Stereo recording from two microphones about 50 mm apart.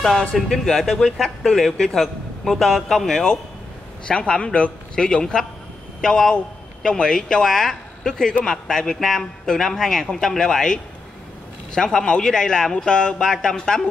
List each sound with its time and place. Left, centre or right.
0.5 s a man's voice: centre
4.1 s a man's voice: centre